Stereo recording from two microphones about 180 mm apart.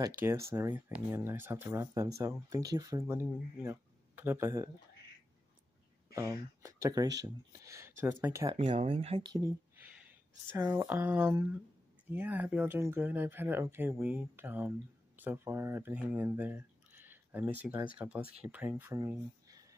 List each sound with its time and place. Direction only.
0.2 s speech: 15° right (ahead or behind)
6.1 s speech: 15° right (ahead or behind)
8.5 s speech: 30° right (ahead or behind)
9.9 s speech: 10° right (ahead or behind)